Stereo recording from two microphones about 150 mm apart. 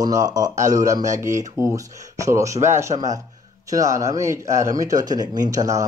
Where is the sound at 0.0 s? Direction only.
25° right (ahead or behind).